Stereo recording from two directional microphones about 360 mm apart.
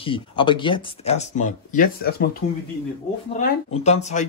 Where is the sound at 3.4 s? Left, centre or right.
Centre.